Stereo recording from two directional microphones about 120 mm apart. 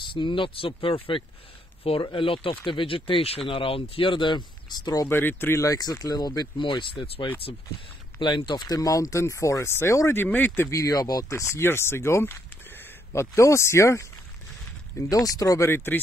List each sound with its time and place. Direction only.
0.0 s speech: 45° left (ahead or behind)
5.0 s speech: 20° left (ahead or behind)